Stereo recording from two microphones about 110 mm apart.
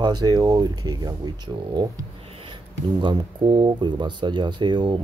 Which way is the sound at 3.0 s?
45° right (ahead or behind).